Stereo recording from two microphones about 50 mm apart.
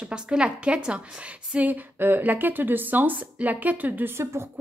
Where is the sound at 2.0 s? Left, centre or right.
Right.